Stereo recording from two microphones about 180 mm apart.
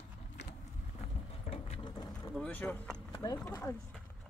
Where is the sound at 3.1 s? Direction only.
20° left (ahead or behind).